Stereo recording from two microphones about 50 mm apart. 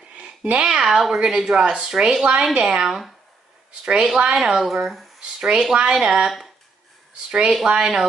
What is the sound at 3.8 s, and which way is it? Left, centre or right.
Speech, centre.